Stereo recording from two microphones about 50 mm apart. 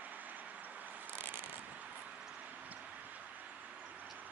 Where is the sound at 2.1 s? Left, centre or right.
Centre.